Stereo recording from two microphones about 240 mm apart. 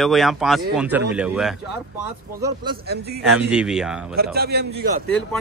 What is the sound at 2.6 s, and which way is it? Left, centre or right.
Speech, right.